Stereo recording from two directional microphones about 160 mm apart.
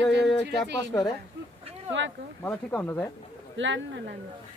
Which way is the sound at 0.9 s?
10° left (ahead or behind).